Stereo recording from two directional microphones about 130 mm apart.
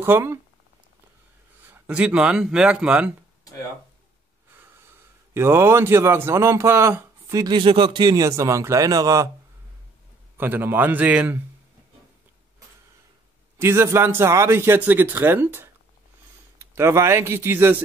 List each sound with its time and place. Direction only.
0.0 s a man's voice: 20° right (ahead or behind)
1.7 s a man's voice: 10° right (ahead or behind)
5.3 s a man's voice: 20° right (ahead or behind)
7.5 s a man's voice: 40° right (ahead or behind)
10.3 s a man's voice: 15° right (ahead or behind)
13.6 s a man's voice: 20° right (ahead or behind)